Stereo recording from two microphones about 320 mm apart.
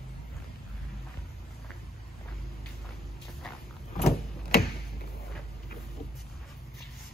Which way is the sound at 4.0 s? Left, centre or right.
Left.